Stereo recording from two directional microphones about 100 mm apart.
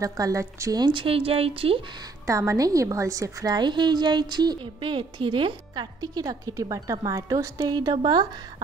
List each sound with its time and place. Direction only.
0.0 s a woman's voice: 35° right (ahead or behind)
0.7 s a woman's voice: 45° right (ahead or behind)
1.0 s speech: 70° right (ahead or behind)
2.2 s a woman's voice: 30° right (ahead or behind); by 8.3 s 50° right (ahead or behind)